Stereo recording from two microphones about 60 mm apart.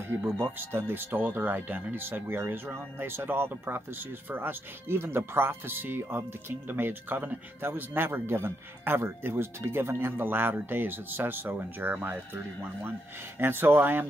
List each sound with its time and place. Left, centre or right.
0.2 s speech: right
13.4 s speech: right